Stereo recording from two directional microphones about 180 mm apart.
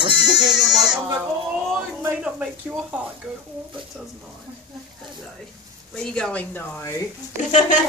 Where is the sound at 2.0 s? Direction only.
5° right (ahead or behind).